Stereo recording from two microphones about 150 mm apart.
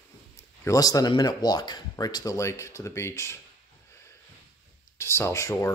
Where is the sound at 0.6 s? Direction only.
20° left (ahead or behind).